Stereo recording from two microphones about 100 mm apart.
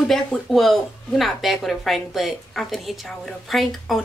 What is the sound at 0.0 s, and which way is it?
A woman's voice, 5° left (ahead or behind).